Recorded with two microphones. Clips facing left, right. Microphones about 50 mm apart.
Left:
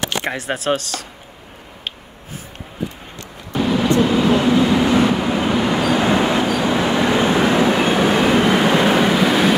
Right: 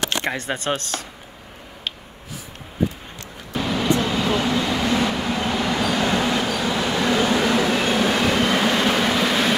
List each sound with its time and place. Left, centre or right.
0.2 s speech: centre
3.5 s vehicle: centre